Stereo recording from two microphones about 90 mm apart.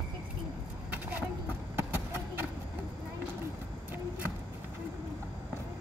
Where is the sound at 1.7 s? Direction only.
25° right (ahead or behind).